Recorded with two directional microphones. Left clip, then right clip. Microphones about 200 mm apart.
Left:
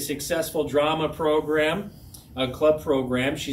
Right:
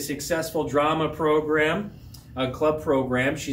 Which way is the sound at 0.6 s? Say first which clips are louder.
Even; 10° left (ahead or behind).